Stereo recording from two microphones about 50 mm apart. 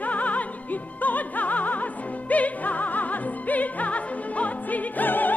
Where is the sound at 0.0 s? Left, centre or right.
Left.